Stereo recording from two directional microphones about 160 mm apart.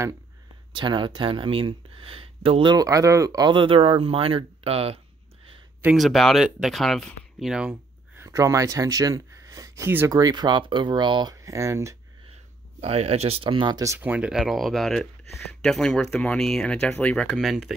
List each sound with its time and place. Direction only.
0.7 s speech: 30° right (ahead or behind)
5.9 s speech: centre (ahead or behind); by 12.0 s 20° right (ahead or behind)
12.8 s speech: 40° right (ahead or behind)
13.9 s speech: 10° right (ahead or behind)